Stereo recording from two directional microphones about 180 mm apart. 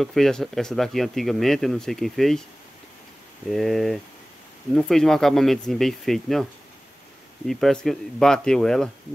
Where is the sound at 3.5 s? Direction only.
Centre (ahead or behind).